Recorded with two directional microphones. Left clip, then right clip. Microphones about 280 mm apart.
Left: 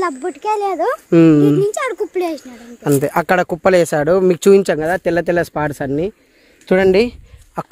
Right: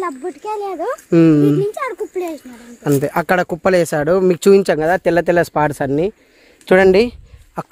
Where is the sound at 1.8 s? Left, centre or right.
Left.